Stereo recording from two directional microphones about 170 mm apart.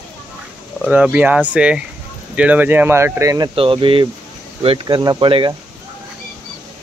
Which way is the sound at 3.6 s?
30° right (ahead or behind).